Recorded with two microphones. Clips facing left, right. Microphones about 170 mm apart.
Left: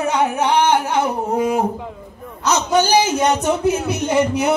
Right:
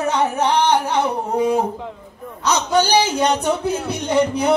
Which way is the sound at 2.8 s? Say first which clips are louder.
Left 1 dB; 45° left (ahead or behind).